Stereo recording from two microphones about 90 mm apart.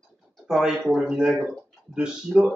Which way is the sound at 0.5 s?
5° right (ahead or behind).